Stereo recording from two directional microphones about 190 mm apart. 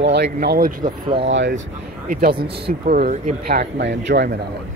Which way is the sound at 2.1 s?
50° right (ahead or behind).